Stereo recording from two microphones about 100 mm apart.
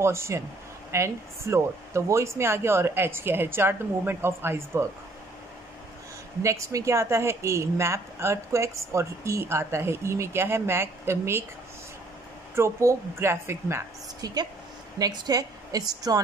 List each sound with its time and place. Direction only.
0.0 s a woman's voice: 25° right (ahead or behind)
6.4 s a woman's voice: 30° right (ahead or behind)
12.5 s a woman's voice: 25° right (ahead or behind)
14.2 s a woman's voice: 40° right (ahead or behind)